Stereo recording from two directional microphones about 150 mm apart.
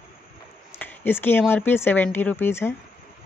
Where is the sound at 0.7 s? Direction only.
15° left (ahead or behind).